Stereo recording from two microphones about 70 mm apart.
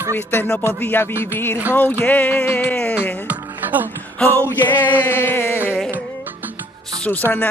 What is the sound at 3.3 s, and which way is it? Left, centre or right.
Music, right.